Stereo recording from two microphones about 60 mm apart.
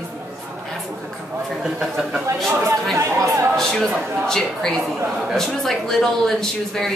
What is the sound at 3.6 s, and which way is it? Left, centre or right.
A woman's voice, centre.